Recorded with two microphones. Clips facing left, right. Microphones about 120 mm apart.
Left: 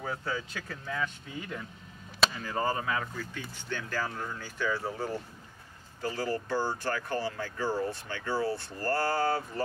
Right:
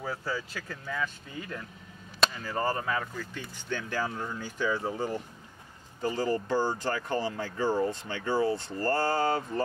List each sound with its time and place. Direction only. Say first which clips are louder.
0.0 s speech: right 1 dB; centre (ahead or behind)
2.1 s a sound: even; centre (ahead or behind)
2.8 s speech: right 1 dB; 5° left (ahead or behind)
3.7 s speech: right 2 dB; 15° right (ahead or behind)